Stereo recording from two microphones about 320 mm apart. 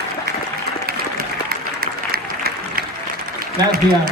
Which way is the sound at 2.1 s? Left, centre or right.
Right.